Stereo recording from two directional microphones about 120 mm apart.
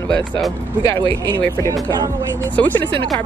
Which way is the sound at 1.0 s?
40° right (ahead or behind).